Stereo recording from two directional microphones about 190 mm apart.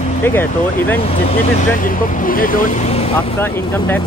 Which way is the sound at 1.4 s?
40° left (ahead or behind).